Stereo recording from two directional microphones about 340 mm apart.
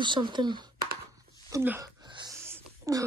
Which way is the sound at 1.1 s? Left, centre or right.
Centre.